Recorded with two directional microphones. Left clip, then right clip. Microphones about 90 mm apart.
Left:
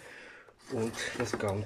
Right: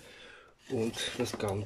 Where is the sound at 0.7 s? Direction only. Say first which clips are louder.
Even; 55° right (ahead or behind).